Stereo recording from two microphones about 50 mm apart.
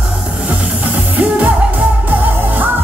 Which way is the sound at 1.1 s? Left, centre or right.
Right.